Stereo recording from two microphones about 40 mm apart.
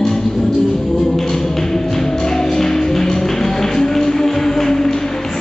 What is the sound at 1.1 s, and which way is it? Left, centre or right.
Music, centre.